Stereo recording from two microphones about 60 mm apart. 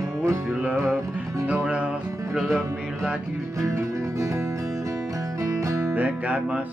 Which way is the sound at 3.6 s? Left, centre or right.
Right.